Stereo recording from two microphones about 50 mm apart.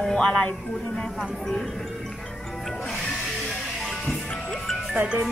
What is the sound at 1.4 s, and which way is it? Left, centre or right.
Speech, centre.